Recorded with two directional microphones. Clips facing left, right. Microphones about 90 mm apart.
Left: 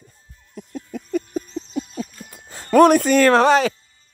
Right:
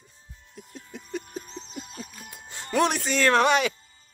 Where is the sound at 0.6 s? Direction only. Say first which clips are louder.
Left 10 dB; 50° left (ahead or behind).